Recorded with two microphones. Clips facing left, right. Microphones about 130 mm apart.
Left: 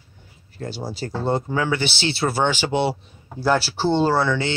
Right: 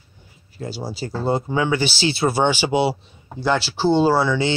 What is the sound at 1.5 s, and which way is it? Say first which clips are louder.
Speech: right 2 dB; 20° right (ahead or behind).